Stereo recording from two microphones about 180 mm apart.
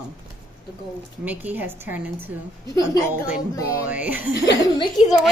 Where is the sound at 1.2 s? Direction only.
10° right (ahead or behind).